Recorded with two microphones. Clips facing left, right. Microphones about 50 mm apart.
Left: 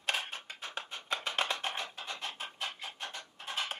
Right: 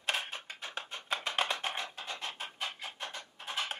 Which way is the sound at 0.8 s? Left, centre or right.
Centre.